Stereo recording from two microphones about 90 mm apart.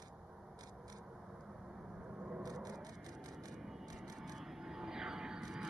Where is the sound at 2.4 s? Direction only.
45° right (ahead or behind).